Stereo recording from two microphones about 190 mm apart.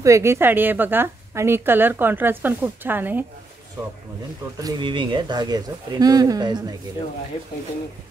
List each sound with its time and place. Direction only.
0.0 s a woman's voice: 15° right (ahead or behind)
4.6 s speech: 20° right (ahead or behind)